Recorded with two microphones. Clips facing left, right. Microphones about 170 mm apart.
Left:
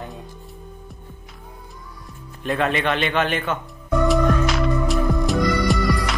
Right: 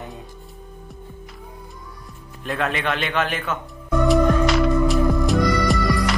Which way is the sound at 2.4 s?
Centre (ahead or behind).